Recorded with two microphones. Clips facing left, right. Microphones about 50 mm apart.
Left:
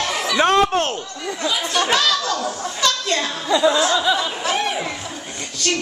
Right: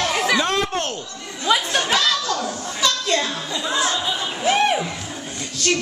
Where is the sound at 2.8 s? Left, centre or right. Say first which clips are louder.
Even; centre.